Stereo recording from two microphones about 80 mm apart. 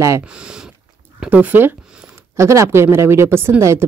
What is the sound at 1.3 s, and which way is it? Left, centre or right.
Speech, right.